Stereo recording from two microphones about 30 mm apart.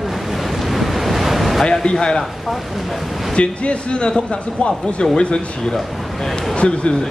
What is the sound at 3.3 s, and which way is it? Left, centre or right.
Speech, left.